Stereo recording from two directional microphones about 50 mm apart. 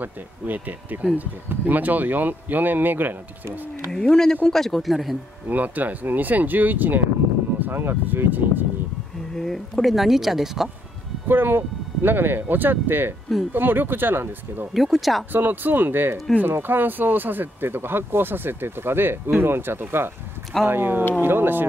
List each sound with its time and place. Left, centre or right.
0.0 s speech: right
4.0 s speech: centre
5.5 s speech: right
9.3 s speech: centre
11.2 s speech: right
14.7 s speech: centre
15.3 s speech: right